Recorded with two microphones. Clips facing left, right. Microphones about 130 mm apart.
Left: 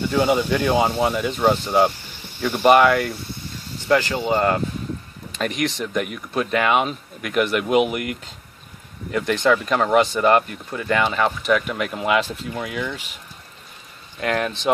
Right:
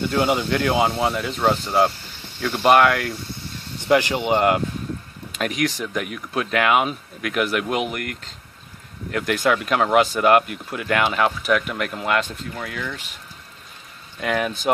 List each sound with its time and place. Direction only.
0.2 s speech: 10° left (ahead or behind)
0.8 s speech: centre (ahead or behind)
3.9 s speech: 15° right (ahead or behind)
5.3 s speech: 5° right (ahead or behind)
9.1 s speech: 5° right (ahead or behind); by 13.0 s 15° left (ahead or behind)
14.2 s speech: 5° right (ahead or behind)